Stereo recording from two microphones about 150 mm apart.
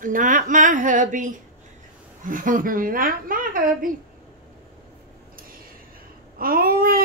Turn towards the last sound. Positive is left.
turn(degrees=-75)  # may be behind; listen again after turning